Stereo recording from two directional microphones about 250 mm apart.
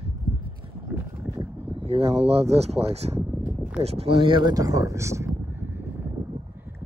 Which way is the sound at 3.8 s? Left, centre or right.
Right.